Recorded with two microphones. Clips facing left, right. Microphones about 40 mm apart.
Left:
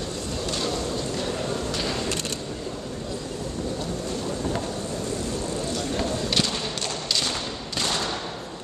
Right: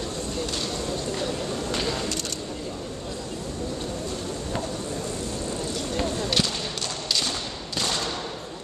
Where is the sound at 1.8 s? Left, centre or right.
Centre.